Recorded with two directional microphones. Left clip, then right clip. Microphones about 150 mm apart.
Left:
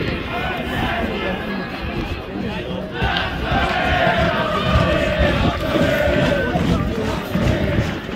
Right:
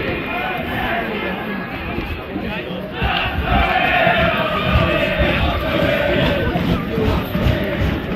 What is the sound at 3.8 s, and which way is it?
Music, 35° left (ahead or behind).